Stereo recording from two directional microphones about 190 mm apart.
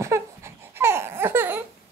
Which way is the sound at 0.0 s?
15° right (ahead or behind).